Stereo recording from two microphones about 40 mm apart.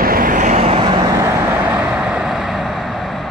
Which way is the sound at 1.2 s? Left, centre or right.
Right.